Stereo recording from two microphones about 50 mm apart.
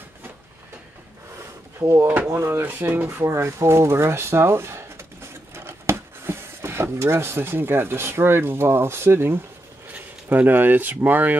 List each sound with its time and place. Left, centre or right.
1.8 s speech: right
2.2 s speech: right
2.6 s speech: right
3.1 s speech: right
9.9 s speech: right